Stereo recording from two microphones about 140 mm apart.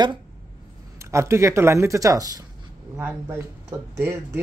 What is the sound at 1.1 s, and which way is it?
Speech, 20° right (ahead or behind).